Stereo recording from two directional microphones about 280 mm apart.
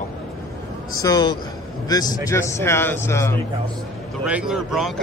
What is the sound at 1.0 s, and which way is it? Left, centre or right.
Speech, centre.